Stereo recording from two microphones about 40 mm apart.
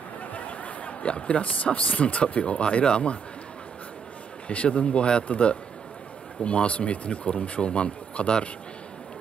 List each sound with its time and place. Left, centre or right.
0.3 s a sound: left
1.8 s speech: left
4.5 s speech: left